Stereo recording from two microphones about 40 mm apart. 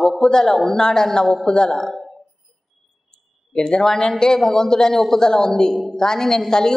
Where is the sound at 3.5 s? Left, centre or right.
Centre.